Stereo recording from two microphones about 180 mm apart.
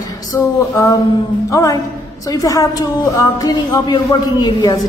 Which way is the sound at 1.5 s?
20° left (ahead or behind).